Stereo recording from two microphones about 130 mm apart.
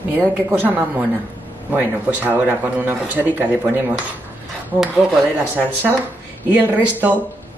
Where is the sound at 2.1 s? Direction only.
15° right (ahead or behind).